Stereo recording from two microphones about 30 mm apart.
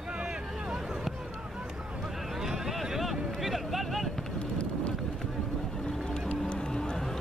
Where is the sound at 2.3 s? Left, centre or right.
Centre.